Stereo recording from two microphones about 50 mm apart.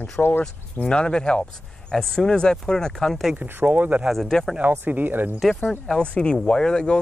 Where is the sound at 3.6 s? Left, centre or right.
Right.